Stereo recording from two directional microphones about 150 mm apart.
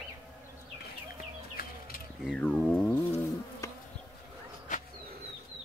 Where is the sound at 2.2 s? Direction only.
5° left (ahead or behind).